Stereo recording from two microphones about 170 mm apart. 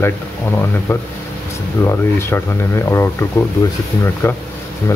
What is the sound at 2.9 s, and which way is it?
Speech, 15° left (ahead or behind).